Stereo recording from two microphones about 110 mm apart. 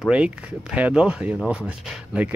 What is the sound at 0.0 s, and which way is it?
Speech, 5° right (ahead or behind).